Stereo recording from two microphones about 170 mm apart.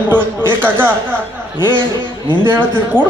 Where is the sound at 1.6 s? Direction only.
25° left (ahead or behind).